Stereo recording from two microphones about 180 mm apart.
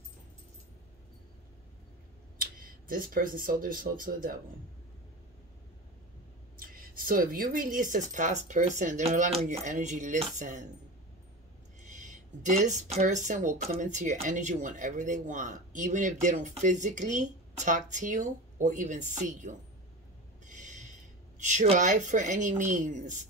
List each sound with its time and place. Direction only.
2.3 s speech: 50° right (ahead or behind)
6.6 s speech: 50° right (ahead or behind)
11.9 s speech: 45° right (ahead or behind)
20.4 s a sound: 45° right (ahead or behind)
21.4 s speech: 45° right (ahead or behind)